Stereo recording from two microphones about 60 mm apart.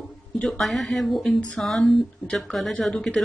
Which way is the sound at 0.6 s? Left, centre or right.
Centre.